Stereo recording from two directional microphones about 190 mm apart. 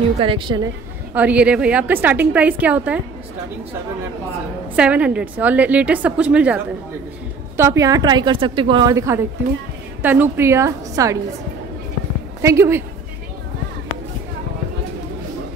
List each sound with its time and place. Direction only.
0.2 s a woman's voice: 25° right (ahead or behind)
1.1 s a woman's voice: 5° right (ahead or behind)
4.7 s a woman's voice: 5° right (ahead or behind)
12.4 s a woman's voice: 15° right (ahead or behind)